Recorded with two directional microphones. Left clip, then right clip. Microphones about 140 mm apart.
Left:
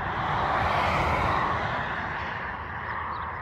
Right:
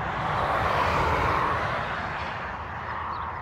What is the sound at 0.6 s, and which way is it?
Vehicle, 35° right (ahead or behind).